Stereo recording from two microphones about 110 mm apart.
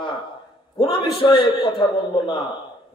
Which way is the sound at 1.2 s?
45° left (ahead or behind).